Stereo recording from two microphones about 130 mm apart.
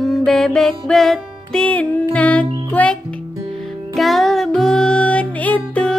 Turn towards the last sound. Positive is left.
turn(degrees=10)  # may be behind; listen again after turning